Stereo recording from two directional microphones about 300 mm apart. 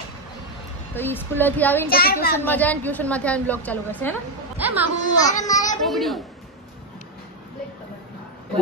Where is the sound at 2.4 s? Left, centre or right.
Centre.